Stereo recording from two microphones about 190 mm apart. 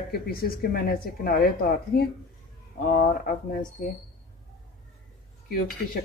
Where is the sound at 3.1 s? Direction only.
50° left (ahead or behind).